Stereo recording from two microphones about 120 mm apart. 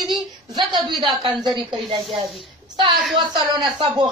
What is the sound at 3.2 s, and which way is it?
Speech, 40° right (ahead or behind).